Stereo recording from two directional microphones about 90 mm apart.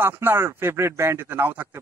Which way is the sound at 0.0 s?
25° right (ahead or behind).